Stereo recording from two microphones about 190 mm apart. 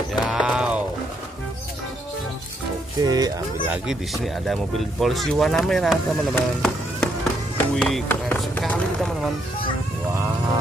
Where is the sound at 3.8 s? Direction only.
Centre (ahead or behind).